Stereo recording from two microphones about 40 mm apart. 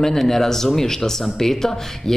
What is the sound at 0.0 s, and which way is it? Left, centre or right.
Speech, centre.